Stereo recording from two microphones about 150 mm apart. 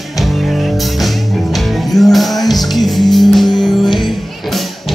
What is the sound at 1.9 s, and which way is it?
Music, centre (ahead or behind).